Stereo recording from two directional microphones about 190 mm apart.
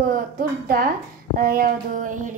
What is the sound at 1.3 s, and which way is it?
Child singing, 50° right (ahead or behind).